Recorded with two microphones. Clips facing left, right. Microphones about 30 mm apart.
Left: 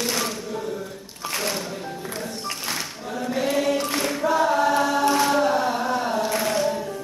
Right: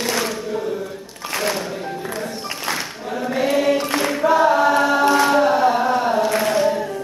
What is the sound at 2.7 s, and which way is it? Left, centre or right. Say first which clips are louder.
Choir: right 5 dB; centre.